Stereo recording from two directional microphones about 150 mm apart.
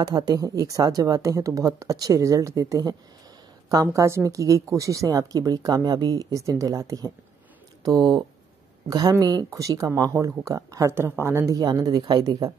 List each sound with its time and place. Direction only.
0.0 s speech: 25° right (ahead or behind)